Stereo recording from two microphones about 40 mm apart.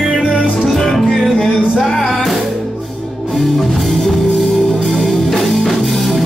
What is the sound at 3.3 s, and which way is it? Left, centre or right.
Music, centre.